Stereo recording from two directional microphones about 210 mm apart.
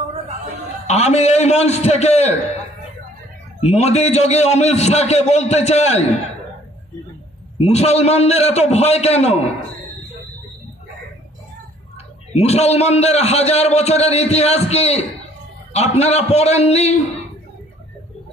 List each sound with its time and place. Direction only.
0.8 s a man's voice: 30° left (ahead or behind)
3.6 s a man's voice: 30° left (ahead or behind)
7.6 s a man's voice: 30° left (ahead or behind)
12.3 s a man's voice: 30° left (ahead or behind)